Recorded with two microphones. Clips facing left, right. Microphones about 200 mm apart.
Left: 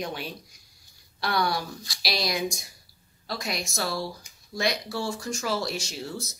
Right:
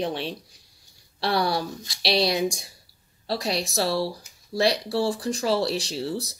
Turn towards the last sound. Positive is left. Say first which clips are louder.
# right 6 dB
turn(degrees=-35)  # may be behind; listen again after turning